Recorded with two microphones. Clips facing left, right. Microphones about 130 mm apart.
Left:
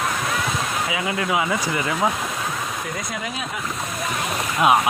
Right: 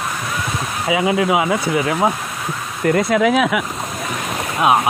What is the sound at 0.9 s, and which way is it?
Speech, 25° right (ahead or behind).